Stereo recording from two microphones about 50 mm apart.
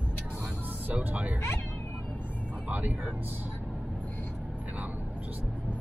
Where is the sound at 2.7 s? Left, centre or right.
Right.